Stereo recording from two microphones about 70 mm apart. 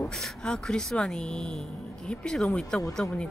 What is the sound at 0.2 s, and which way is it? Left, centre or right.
Speech, centre.